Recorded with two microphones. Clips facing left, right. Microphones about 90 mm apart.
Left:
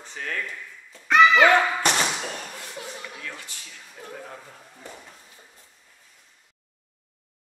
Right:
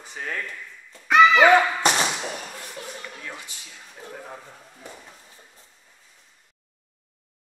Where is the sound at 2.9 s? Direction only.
10° left (ahead or behind).